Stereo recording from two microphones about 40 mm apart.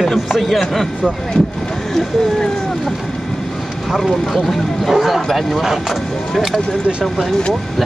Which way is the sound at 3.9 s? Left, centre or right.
Centre.